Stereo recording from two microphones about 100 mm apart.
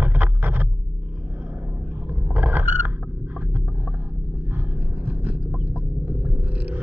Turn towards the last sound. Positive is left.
turn(degrees=-15)  # may be behind; listen again after turning